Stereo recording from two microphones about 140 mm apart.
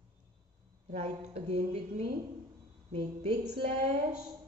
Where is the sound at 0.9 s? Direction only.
50° right (ahead or behind).